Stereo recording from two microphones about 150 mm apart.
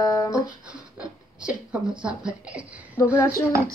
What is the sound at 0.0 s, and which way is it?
Music, 20° left (ahead or behind).